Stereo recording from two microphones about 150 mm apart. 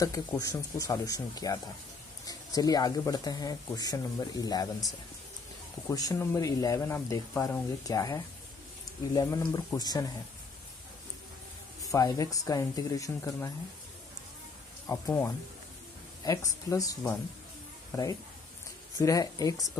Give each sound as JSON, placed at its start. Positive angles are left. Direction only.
{"t": 0.0, "sound": "speech", "side_deg": 25}
{"t": 5.9, "sound": "speech", "side_deg": 20}
{"t": 11.8, "sound": "speech", "side_deg": 25}
{"t": 14.9, "sound": "speech", "side_deg": 20}
{"t": 16.3, "sound": "speech", "side_deg": 25}
{"t": 18.9, "sound": "speech", "side_deg": 25}